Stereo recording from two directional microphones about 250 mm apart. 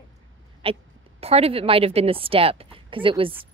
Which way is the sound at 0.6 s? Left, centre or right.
Right.